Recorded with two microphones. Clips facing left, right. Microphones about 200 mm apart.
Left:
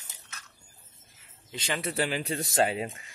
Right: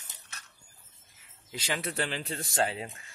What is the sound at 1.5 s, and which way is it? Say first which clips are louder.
Speech: left 1 dB; 5° right (ahead or behind).